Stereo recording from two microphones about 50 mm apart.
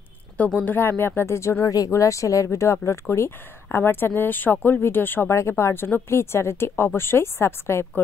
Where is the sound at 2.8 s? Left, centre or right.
Left.